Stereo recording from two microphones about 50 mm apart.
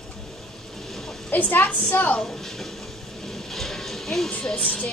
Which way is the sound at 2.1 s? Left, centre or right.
Centre.